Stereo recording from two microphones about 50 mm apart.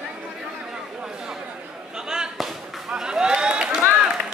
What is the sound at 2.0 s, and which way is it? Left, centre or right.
Slam, centre.